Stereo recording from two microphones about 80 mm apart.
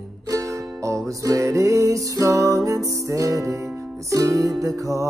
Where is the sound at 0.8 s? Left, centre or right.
Right.